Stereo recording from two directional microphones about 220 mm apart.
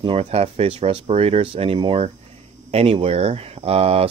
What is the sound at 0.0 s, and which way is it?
Speech, 25° right (ahead or behind).